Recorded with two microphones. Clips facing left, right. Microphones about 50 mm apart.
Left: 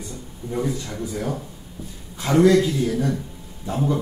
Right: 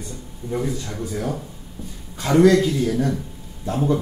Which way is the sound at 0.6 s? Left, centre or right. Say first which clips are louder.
Left 1 dB; centre.